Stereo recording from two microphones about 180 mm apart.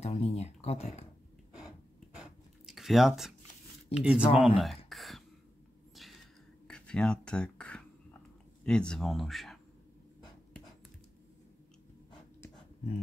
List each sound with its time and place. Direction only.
0.0 s speech: 35° left (ahead or behind)
2.1 s a sound: centre (ahead or behind)
3.9 s speech: 5° right (ahead or behind)
4.6 s a sound: centre (ahead or behind)
6.7 s whispering: 5° left (ahead or behind)
8.6 s speech: 5° left (ahead or behind)